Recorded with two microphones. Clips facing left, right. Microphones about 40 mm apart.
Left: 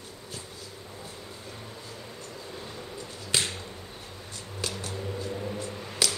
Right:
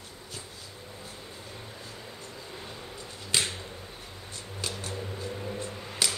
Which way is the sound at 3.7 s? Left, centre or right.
Centre.